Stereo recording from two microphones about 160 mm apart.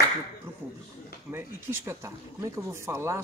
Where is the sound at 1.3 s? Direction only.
15° right (ahead or behind).